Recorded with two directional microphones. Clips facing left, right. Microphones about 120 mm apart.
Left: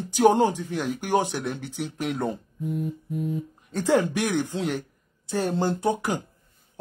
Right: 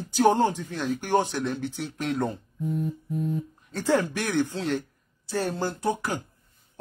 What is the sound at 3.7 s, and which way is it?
Speech, 15° left (ahead or behind).